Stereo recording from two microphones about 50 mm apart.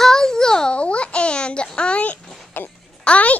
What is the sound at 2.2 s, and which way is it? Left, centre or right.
Music, centre.